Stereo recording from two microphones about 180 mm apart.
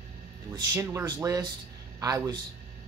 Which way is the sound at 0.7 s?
15° right (ahead or behind).